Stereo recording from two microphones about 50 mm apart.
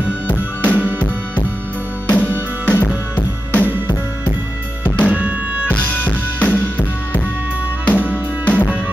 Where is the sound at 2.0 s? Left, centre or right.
Left.